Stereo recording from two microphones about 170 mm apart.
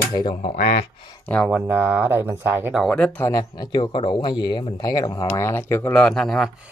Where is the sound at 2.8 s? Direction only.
5° left (ahead or behind).